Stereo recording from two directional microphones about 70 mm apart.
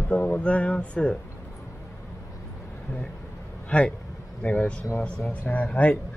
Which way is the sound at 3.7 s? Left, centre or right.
Centre.